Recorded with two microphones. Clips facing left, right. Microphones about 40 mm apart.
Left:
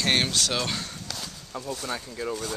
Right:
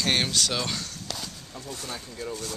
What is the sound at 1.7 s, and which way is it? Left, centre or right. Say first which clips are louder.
Speech: left 4 dB; left.